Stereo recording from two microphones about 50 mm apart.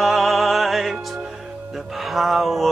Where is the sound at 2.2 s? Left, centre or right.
Centre.